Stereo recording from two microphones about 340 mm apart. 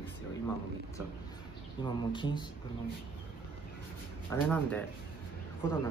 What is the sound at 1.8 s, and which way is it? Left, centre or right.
Speech, centre.